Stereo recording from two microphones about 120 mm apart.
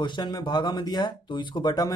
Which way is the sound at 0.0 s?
40° left (ahead or behind).